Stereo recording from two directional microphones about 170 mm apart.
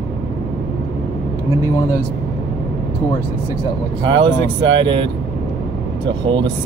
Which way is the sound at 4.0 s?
30° right (ahead or behind).